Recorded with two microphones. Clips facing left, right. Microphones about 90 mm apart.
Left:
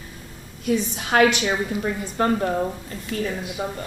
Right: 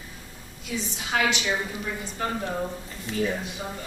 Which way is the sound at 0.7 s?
50° left (ahead or behind).